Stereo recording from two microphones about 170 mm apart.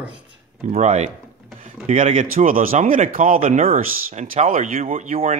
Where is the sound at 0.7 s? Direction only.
40° right (ahead or behind).